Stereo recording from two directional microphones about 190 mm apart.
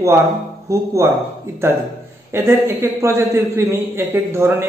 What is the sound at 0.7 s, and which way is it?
Speech, 15° right (ahead or behind).